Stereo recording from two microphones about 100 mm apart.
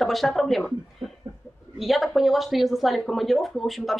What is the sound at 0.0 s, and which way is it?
A woman's voice, centre (ahead or behind).